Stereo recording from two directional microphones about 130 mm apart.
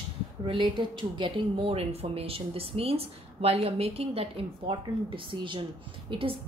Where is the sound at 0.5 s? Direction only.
40° right (ahead or behind).